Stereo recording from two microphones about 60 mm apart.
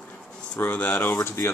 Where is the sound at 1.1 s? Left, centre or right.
Left.